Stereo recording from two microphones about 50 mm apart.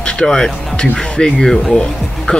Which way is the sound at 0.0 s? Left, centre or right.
Centre.